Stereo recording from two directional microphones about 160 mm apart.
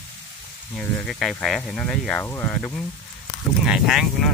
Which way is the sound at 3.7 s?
Centre (ahead or behind).